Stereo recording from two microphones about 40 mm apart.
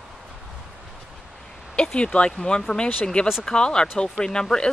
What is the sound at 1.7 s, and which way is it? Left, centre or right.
Speech, left.